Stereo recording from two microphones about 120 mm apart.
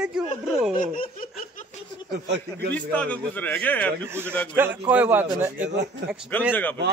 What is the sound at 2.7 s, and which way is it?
A man's voice, 10° left (ahead or behind).